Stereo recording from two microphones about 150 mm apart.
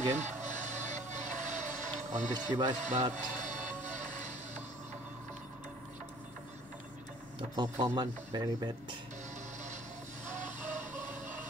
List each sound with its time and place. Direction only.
0.1 s music: 55° right (ahead or behind)
7.3 s speech: 25° right (ahead or behind)